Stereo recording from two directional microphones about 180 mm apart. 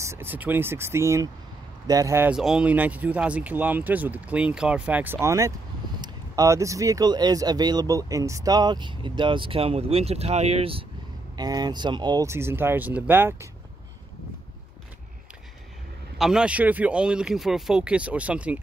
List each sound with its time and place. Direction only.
0.0 s speech: 15° right (ahead or behind)
16.2 s speech: 5° right (ahead or behind)